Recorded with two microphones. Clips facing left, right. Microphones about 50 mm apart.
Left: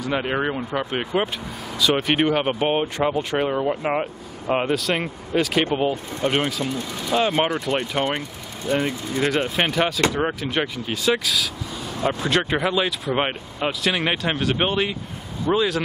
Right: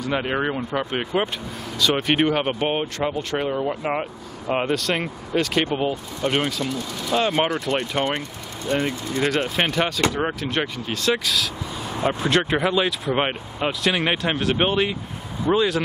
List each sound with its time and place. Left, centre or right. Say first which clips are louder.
0.0 s speech: even; centre
6.7 s speech: even; centre
7.1 s speech: even; centre
11.9 s speech: right 1 dB; centre